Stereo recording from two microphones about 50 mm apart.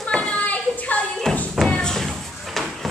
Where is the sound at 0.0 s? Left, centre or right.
Centre.